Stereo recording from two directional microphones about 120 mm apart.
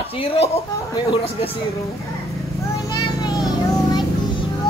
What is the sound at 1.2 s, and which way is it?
Speech, 55° left (ahead or behind).